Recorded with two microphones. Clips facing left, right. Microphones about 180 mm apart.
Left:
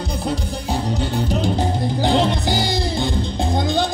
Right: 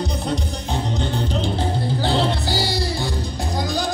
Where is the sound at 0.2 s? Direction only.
5° left (ahead or behind).